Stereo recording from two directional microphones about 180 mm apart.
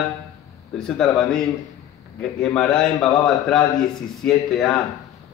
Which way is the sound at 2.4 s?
5° left (ahead or behind).